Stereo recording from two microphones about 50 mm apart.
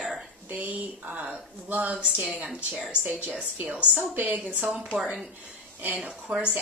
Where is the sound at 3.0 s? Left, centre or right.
Right.